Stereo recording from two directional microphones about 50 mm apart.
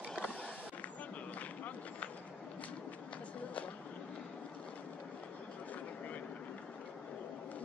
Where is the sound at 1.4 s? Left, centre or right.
Left.